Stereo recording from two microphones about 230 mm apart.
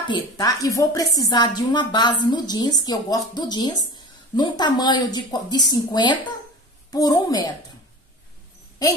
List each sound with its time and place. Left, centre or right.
0.1 s a woman's voice: centre